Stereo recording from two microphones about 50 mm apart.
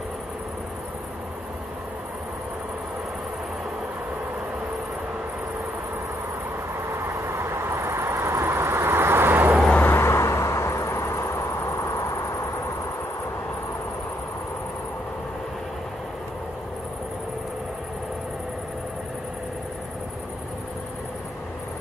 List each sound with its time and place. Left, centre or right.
7.0 s vehicle: right
8.0 s vehicle: right
9.8 s vehicle: left